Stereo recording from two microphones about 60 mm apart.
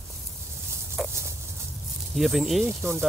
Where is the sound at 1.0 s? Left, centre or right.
Centre.